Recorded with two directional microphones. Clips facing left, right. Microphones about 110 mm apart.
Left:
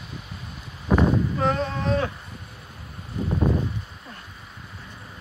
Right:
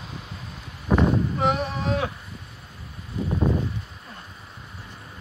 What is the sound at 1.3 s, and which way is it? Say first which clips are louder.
Boat: even; 15° right (ahead or behind).